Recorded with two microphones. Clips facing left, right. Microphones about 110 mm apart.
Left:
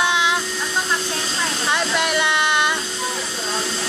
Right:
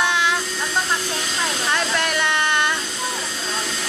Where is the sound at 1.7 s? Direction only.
15° left (ahead or behind).